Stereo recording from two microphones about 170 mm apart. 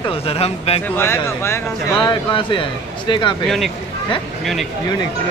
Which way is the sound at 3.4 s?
Centre (ahead or behind).